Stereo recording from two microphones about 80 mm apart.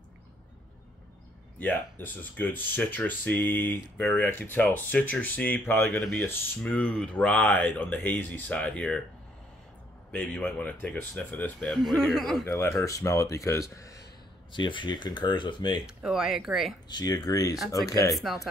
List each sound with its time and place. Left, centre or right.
1.6 s speech: left
5.9 s speech: centre
10.1 s speech: centre
11.7 s speech: centre
12.4 s speech: left
14.5 s speech: left
16.0 s speech: centre
16.9 s speech: left
18.1 s speech: centre